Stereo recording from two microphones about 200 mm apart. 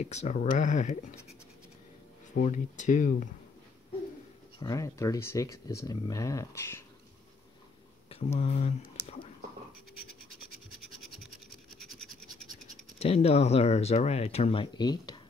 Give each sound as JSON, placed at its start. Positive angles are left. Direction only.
{"t": 0.0, "sound": "speech", "side_deg": 35}
{"t": 2.4, "sound": "speech", "side_deg": 40}
{"t": 4.6, "sound": "speech", "side_deg": 20}
{"t": 8.4, "sound": "speech", "side_deg": 35}
{"t": 9.0, "sound": "whispering", "side_deg": 15}
{"t": 13.0, "sound": "speech", "side_deg": 30}